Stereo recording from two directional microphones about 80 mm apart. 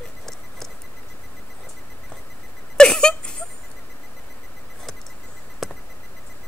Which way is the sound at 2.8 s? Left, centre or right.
Centre.